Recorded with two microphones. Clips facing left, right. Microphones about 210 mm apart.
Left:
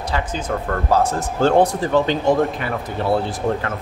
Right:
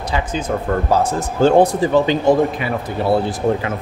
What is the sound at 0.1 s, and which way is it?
Speech, 15° right (ahead or behind).